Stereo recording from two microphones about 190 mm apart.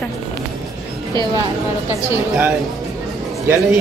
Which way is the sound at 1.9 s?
10° right (ahead or behind).